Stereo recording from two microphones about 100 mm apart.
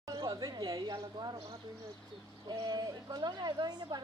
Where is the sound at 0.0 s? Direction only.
45° right (ahead or behind).